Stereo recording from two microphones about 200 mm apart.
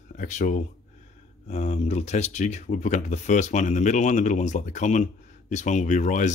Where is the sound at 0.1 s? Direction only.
40° left (ahead or behind).